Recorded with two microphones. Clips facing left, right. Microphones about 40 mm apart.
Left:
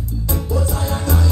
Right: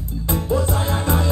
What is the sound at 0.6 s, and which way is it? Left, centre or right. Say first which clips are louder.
Music: right 1 dB; right.